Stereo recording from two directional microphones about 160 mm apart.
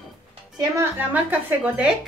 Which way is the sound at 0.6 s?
20° right (ahead or behind).